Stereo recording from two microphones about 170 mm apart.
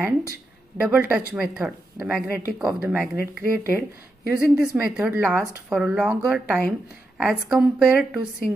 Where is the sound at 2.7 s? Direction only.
5° right (ahead or behind).